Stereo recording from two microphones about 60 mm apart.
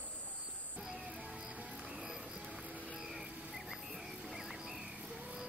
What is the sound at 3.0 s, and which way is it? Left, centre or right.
Music, centre.